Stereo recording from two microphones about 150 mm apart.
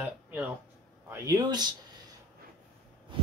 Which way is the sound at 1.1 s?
25° right (ahead or behind).